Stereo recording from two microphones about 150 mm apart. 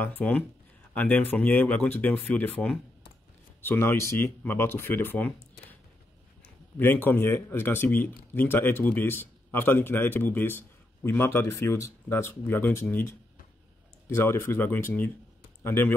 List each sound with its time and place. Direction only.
0.0 s speech: 10° left (ahead or behind)
6.8 s speech: 15° left (ahead or behind)